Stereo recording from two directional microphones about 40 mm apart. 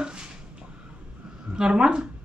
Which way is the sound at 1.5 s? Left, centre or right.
Right.